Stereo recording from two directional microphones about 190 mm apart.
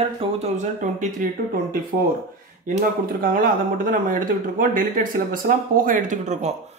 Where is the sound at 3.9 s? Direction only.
45° right (ahead or behind).